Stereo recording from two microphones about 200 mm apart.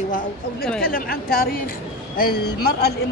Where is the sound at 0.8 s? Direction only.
50° left (ahead or behind).